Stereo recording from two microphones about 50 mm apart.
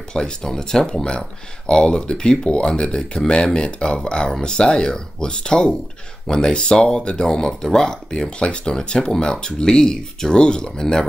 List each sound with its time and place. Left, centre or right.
0.1 s speech: centre